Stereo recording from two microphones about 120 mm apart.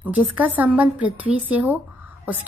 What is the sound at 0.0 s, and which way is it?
A woman's voice, 15° right (ahead or behind).